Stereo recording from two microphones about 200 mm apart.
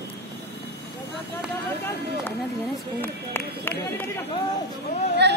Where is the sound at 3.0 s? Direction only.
10° left (ahead or behind).